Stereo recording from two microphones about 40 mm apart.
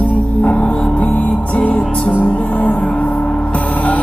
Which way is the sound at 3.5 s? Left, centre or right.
Left.